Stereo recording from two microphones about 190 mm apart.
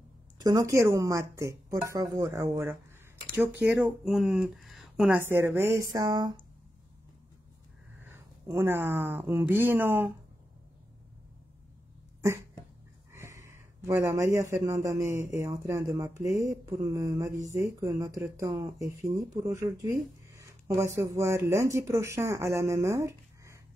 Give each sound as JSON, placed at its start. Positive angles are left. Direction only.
{"t": 0.4, "sound": "speech", "side_deg": -20}
{"t": 8.1, "sound": "speech", "side_deg": -10}
{"t": 13.1, "sound": "speech", "side_deg": -15}